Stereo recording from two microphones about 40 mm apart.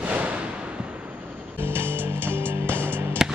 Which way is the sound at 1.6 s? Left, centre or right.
Right.